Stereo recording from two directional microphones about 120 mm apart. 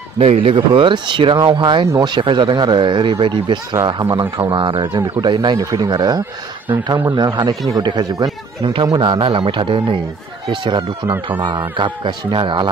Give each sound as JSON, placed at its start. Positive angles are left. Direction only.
{"t": 0.2, "sound": "speech", "side_deg": -55}